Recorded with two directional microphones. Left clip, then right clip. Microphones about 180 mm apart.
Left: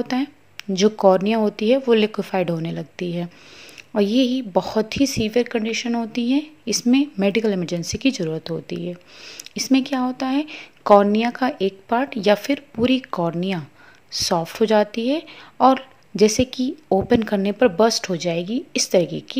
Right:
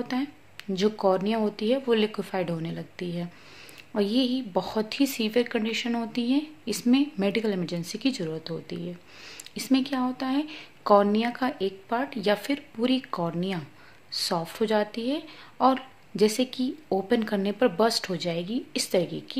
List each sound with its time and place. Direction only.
0.0 s speech: 35° left (ahead or behind)